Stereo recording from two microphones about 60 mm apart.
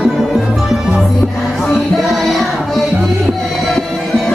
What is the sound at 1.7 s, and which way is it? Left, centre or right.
Music, centre.